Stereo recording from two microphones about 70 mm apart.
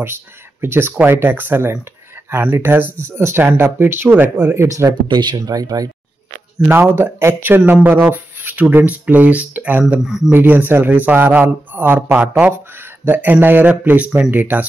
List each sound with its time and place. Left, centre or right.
0.0 s speech: right
5.1 s speech: right
5.4 s speech: right
6.7 s speech: right
10.0 s speech: centre
10.3 s speech: right